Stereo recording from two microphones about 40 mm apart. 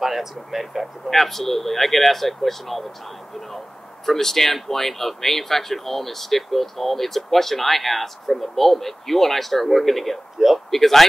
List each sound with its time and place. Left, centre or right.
0.0 s speech: centre